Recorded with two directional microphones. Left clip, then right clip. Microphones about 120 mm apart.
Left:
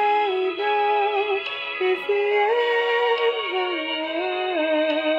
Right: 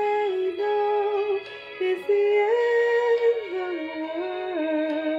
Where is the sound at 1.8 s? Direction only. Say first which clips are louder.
Even; centre (ahead or behind).